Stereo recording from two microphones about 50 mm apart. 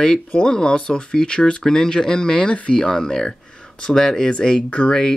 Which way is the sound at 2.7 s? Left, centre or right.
Centre.